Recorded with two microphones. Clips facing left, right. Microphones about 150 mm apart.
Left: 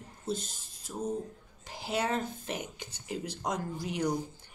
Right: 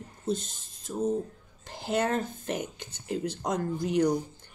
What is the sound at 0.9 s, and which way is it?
Speech, 15° right (ahead or behind).